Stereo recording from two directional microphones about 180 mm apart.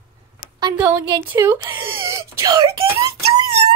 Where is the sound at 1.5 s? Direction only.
25° right (ahead or behind).